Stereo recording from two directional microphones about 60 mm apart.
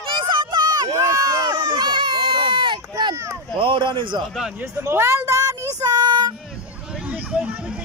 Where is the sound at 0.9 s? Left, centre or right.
Right.